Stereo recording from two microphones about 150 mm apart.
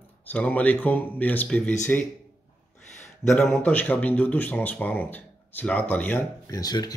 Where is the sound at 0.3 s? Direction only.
10° left (ahead or behind).